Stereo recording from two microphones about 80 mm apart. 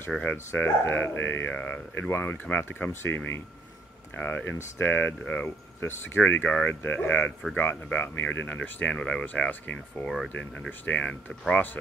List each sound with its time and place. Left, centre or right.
0.2 s speech: left
10.0 s speech: centre
10.9 s speech: centre